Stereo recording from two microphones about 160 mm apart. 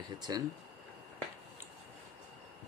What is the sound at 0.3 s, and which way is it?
Speech, 25° right (ahead or behind).